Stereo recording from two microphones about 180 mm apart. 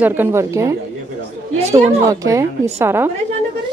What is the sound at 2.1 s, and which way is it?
Speech, 15° right (ahead or behind).